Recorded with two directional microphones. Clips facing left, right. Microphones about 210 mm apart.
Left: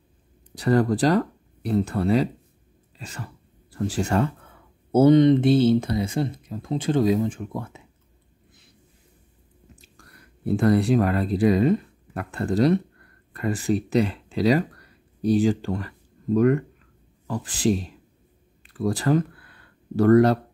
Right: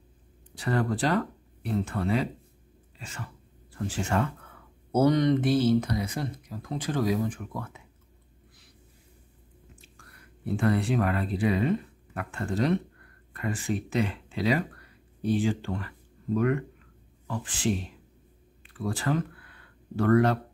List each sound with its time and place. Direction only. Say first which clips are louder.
0.6 s speech: left 7 dB; 40° left (ahead or behind)
9.8 s speech: left 2 dB; 40° left (ahead or behind)
17.3 s speech: left 6 dB; 40° left (ahead or behind)